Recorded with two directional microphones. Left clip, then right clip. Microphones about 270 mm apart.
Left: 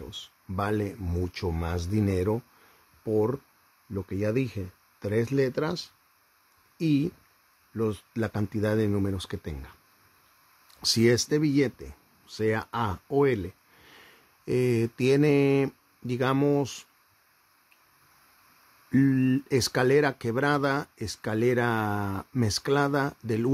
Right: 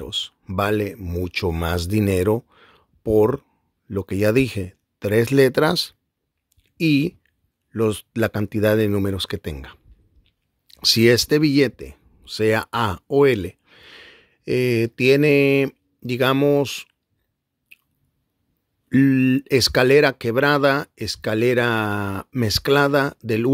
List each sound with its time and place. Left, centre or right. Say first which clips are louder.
0.0 s speech: right 14 dB; centre
18.9 s speech: right 7 dB; centre